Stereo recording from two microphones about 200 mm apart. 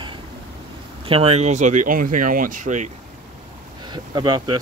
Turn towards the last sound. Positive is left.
turn(degrees=-20)  # may be behind; listen again after turning